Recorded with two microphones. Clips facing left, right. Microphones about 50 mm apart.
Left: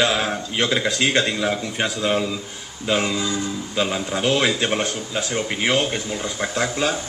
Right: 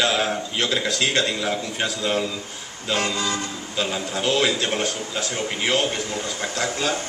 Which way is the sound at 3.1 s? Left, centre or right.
Right.